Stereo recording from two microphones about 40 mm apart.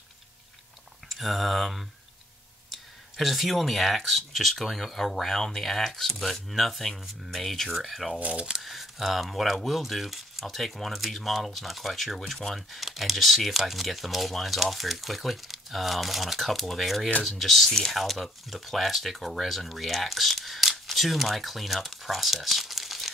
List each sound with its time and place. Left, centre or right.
1.0 s speech: centre
8.2 s speech: right
8.6 s speech: centre